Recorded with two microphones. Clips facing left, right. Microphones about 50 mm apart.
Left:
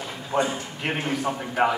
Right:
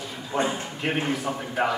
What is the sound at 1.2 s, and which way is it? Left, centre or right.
Speech, left.